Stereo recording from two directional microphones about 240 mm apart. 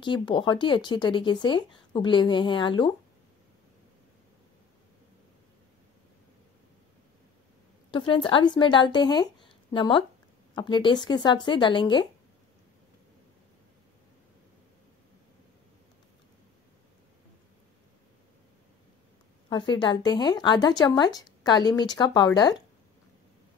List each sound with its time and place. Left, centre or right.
0.0 s speech: centre
7.9 s speech: left
19.5 s a woman's voice: centre